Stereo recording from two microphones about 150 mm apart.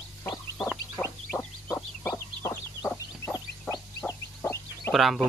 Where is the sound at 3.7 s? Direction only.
25° left (ahead or behind).